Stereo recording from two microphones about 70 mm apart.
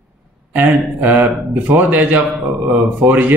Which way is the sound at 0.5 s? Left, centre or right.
Right.